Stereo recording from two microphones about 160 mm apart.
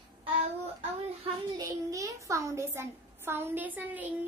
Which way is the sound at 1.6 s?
20° right (ahead or behind).